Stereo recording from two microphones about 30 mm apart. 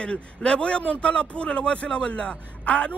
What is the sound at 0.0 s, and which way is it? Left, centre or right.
Speech, left.